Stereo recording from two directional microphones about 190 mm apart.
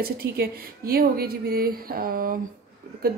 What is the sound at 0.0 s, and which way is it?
A woman's voice, 50° right (ahead or behind).